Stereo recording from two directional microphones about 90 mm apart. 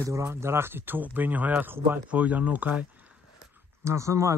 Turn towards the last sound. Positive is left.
turn(degrees=-35)  # may be behind; listen again after turning